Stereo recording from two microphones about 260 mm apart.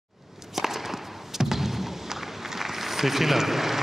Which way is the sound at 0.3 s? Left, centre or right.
Centre.